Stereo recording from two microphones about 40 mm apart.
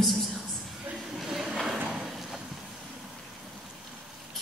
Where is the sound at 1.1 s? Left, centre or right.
Centre.